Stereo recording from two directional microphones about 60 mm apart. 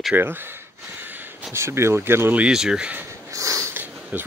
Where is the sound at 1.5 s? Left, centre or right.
Right.